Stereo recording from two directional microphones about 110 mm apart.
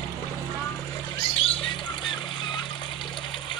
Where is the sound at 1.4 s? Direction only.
55° left (ahead or behind).